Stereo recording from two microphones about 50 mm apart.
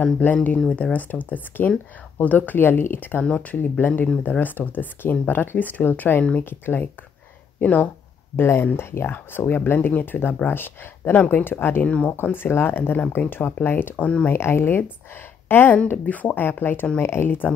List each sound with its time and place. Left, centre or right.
0.2 s speech: left
3.2 s speech: left
3.8 s speech: left
7.6 s speech: left
8.4 s speech: left
9.8 s speech: left
10.2 s speech: left
12.1 s speech: left
13.9 s speech: left
14.3 s speech: left
16.1 s speech: left
17.0 s speech: left